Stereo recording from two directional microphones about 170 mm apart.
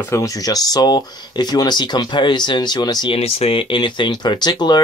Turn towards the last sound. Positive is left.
turn(degrees=25)  # may be behind; listen again after turning